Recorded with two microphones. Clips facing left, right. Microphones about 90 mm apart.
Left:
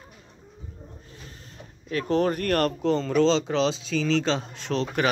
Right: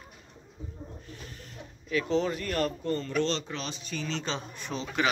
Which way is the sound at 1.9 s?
50° left (ahead or behind).